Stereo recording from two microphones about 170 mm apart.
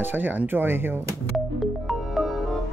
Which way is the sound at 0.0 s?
10° right (ahead or behind).